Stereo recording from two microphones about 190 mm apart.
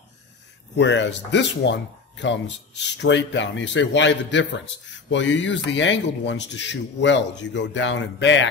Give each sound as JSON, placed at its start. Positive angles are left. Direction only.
{"t": 0.7, "sound": "speech", "side_deg": 70}